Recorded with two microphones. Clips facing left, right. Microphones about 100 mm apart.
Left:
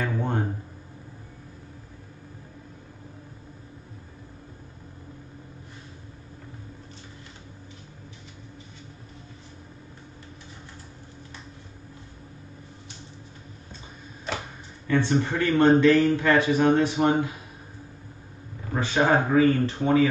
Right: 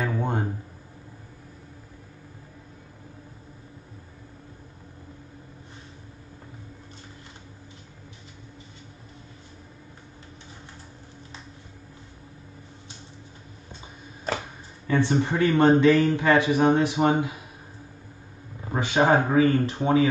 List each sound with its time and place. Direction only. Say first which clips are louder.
0.0 s a sound: right 1 dB; 15° right (ahead or behind)
14.9 s a man's voice: even; 15° right (ahead or behind)
18.7 s a man's voice: right 1 dB; 20° right (ahead or behind)